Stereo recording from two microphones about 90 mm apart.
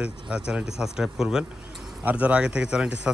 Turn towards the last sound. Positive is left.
turn(degrees=-10)  # may be behind; listen again after turning